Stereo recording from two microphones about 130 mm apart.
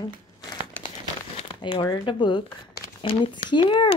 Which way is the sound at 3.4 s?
40° left (ahead or behind).